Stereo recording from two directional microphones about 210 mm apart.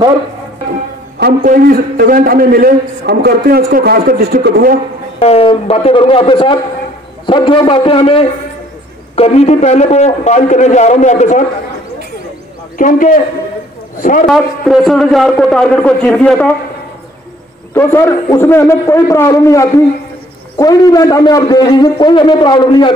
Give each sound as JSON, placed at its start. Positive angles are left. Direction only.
{"t": 1.2, "sound": "a man's voice", "side_deg": -40}
{"t": 5.2, "sound": "a man's voice", "side_deg": 25}
{"t": 12.7, "sound": "a man's voice", "side_deg": 40}
{"t": 14.2, "sound": "a man's voice", "side_deg": 0}
{"t": 17.7, "sound": "a man's voice", "side_deg": 10}